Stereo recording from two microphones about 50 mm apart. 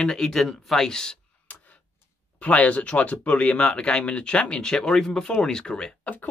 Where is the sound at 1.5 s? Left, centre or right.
Left.